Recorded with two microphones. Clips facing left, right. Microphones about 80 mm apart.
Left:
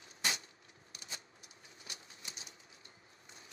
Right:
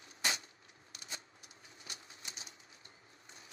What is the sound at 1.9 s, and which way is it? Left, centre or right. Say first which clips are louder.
Bird: right 1 dB; right.